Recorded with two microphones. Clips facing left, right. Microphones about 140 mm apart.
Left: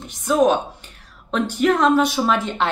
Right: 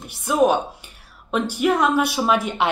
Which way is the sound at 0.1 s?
10° right (ahead or behind).